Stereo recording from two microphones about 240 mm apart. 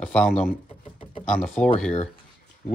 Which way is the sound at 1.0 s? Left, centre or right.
Left.